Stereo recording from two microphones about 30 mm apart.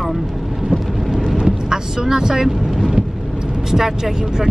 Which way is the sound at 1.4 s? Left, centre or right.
Centre.